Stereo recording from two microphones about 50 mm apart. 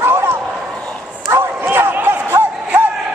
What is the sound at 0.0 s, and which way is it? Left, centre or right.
Bow-wow, right.